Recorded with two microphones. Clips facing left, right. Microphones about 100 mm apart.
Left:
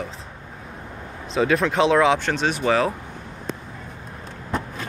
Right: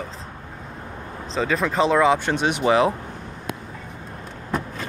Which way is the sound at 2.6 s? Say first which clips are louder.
Right 3 dB; 15° right (ahead or behind).